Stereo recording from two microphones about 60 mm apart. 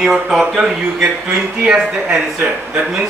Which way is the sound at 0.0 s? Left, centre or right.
Centre.